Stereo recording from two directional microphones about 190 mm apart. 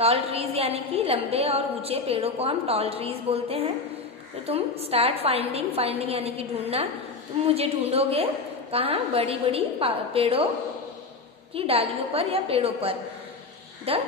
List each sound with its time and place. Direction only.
0.0 s a woman's voice: 30° right (ahead or behind)
11.5 s a woman's voice: 30° right (ahead or behind)